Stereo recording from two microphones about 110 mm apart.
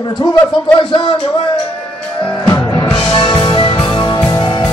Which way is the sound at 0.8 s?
50° left (ahead or behind).